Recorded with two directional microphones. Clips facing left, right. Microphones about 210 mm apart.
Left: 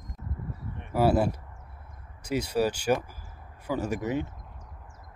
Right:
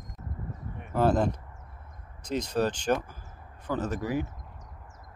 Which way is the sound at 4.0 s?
25° left (ahead or behind).